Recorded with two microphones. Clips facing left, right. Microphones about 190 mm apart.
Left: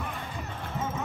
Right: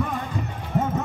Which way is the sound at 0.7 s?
65° right (ahead or behind).